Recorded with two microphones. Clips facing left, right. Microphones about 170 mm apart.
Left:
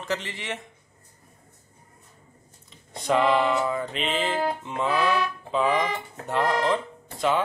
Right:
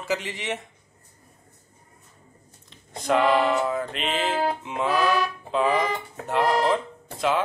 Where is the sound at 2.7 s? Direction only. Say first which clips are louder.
Right 1 dB; centre (ahead or behind).